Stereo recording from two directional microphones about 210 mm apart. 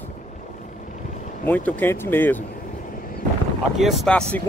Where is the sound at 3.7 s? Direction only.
Centre (ahead or behind).